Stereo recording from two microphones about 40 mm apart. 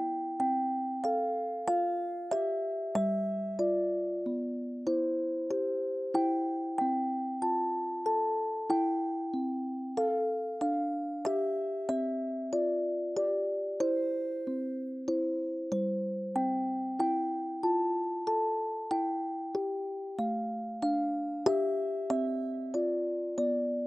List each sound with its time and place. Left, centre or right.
0.4 s music: centre
9.9 s music: centre
20.8 s music: centre
23.4 s music: centre